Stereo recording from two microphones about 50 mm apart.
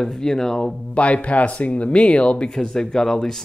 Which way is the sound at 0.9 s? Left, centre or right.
Left.